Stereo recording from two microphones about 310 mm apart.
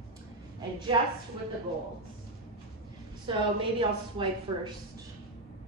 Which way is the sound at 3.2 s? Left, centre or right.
Centre.